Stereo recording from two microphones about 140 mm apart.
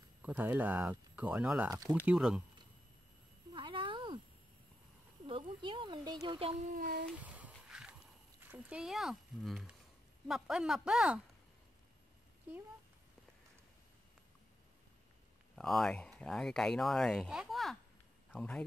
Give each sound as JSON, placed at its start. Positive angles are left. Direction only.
{"t": 0.2, "sound": "speech", "side_deg": -10}
{"t": 3.5, "sound": "cat", "side_deg": -35}
{"t": 5.2, "sound": "a child's voice", "side_deg": -35}
{"t": 7.2, "sound": "a sound", "side_deg": -10}
{"t": 8.5, "sound": "speech", "side_deg": -10}
{"t": 15.5, "sound": "a man's voice", "side_deg": 0}